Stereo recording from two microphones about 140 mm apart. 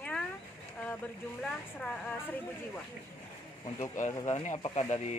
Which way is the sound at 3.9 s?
60° left (ahead or behind).